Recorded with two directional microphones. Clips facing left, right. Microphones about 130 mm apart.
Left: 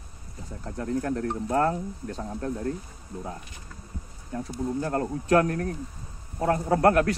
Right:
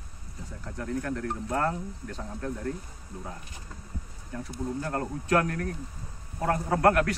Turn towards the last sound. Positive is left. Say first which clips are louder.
# left 2 dB
turn(degrees=30)  # may be behind; listen again after turning